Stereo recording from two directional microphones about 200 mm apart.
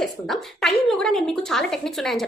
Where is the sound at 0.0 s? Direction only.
Centre (ahead or behind).